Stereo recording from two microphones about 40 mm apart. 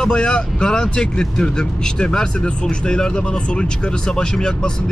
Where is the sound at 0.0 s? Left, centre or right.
Left.